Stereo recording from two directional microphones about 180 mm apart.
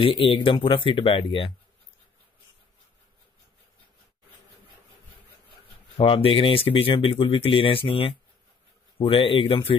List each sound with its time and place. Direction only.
0.0 s speech: 30° left (ahead or behind)
5.9 s speech: 30° left (ahead or behind)